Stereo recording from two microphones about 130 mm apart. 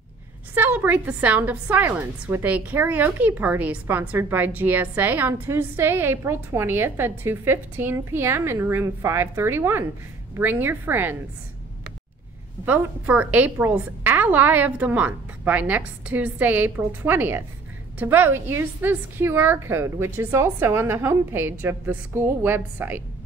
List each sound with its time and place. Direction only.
0.6 s a woman's voice: 15° right (ahead or behind)
12.6 s a woman's voice: 15° right (ahead or behind)